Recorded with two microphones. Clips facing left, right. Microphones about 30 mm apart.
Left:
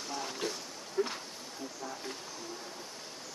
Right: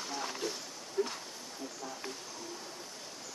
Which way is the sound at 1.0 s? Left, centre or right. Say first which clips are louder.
Left 1 dB; centre.